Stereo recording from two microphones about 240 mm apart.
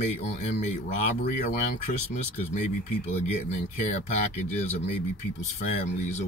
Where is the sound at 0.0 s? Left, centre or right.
Left.